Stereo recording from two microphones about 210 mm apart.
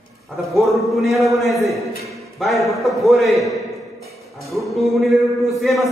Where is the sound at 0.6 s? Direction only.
Centre (ahead or behind).